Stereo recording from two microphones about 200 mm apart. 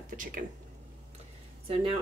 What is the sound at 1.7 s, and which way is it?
Speech, 30° right (ahead or behind).